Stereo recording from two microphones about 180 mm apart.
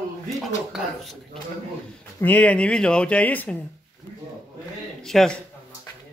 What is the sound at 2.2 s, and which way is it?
Speech, 10° left (ahead or behind).